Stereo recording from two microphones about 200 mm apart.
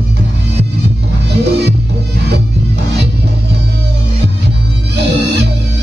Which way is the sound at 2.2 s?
55° right (ahead or behind).